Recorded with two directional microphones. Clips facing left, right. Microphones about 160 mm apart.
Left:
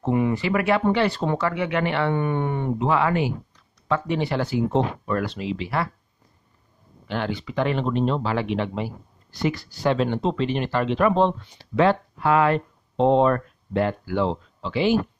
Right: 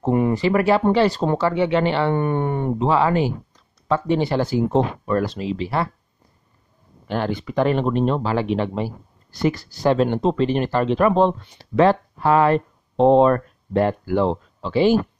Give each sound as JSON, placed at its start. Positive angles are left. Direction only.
{"t": 0.0, "sound": "speech", "side_deg": -40}
{"t": 2.1, "sound": "speech", "side_deg": -45}
{"t": 2.9, "sound": "speech", "side_deg": -30}
{"t": 7.1, "sound": "speech", "side_deg": -45}